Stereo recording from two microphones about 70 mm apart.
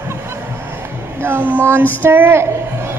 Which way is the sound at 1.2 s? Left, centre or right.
Right.